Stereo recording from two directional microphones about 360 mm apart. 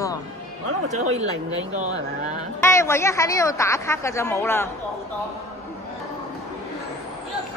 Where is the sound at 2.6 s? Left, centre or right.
Centre.